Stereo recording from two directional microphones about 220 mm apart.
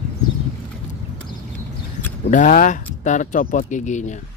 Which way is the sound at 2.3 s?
35° left (ahead or behind).